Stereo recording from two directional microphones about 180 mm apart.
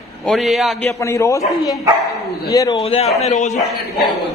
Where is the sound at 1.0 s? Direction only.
15° left (ahead or behind).